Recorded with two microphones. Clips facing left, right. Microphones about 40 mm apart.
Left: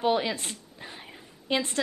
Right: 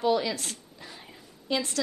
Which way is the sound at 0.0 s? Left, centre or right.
Left.